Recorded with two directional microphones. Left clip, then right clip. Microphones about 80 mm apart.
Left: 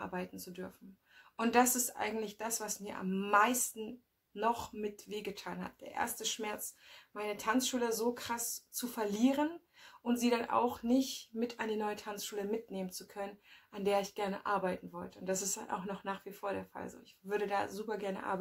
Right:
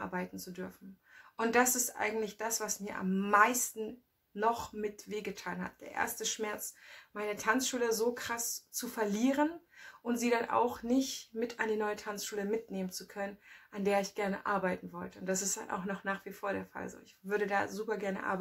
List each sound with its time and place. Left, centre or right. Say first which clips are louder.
0.0 s speech: right 2 dB; left